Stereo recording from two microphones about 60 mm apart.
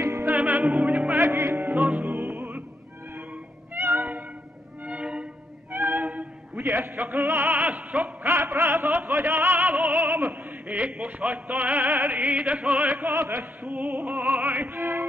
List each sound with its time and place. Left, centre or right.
0.2 s music: right
1.1 s music: right
3.7 s music: right
4.8 s music: centre
5.7 s a sound: right
6.6 s a man's voice: right
7.0 s music: right
7.2 s a man's voice: right
7.5 s music: right
8.5 s opera: right
10.7 s music: right
13.1 s a man's voice: right
13.7 s music: right